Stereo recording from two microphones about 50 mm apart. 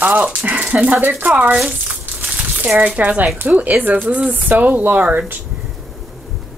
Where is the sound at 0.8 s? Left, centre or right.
Right.